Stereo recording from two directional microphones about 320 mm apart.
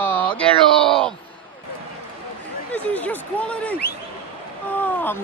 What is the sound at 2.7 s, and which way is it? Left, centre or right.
Speech, centre.